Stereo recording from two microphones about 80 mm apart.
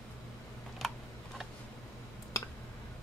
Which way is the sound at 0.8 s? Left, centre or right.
Centre.